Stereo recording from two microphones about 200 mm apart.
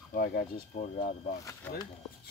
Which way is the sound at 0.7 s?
35° left (ahead or behind).